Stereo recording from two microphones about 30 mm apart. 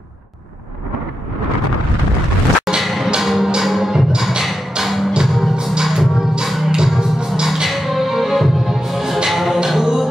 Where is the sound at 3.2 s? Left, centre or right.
Centre.